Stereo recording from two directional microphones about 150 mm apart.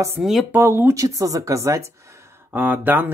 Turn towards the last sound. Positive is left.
turn(degrees=-10)  # may be behind; listen again after turning